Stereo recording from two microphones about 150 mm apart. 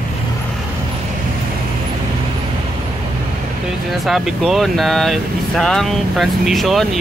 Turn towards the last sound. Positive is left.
turn(degrees=0)  # may be behind; listen again after turning